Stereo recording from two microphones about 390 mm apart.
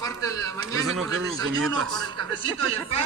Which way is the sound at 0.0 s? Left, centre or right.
Centre.